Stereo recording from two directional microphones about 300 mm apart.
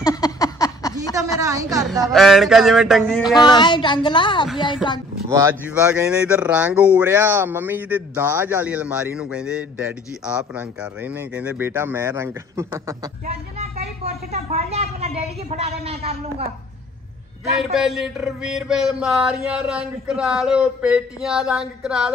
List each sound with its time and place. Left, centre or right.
0.0 s a sound: centre
1.1 s a sound: centre
2.1 s male singing: centre
3.3 s a woman's voice: centre
5.3 s speech: centre
14.5 s a man's voice: right
17.7 s male singing: centre